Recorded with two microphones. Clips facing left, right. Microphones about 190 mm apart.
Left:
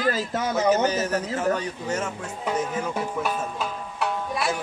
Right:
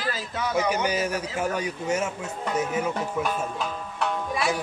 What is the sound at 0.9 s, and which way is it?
A man's voice, 10° right (ahead or behind).